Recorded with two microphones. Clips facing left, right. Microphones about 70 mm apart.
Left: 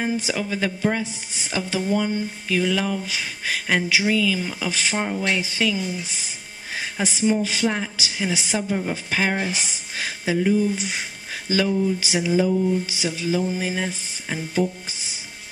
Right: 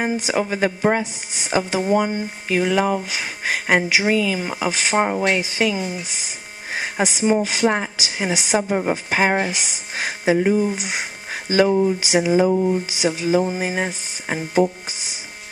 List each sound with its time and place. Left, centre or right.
0.3 s speech: right
6.7 s music: right
7.3 s speech: right
9.5 s speech: left
9.9 s music: right
10.7 s speech: right
12.0 s a sound: right